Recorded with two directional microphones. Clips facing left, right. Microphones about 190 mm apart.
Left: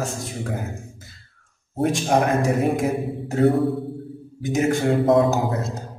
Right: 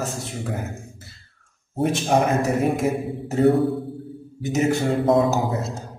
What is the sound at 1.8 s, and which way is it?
A man's voice, centre (ahead or behind).